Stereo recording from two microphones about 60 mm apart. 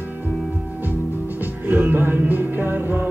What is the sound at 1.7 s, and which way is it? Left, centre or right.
Music, right.